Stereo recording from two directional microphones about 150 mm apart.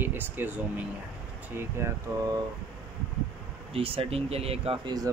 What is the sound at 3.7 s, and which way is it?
Speech, 40° right (ahead or behind).